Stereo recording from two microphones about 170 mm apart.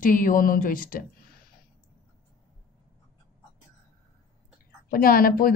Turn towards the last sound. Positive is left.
turn(degrees=60)  # may be behind; listen again after turning